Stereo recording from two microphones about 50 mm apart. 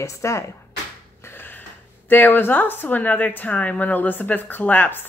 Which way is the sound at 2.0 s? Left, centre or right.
Left.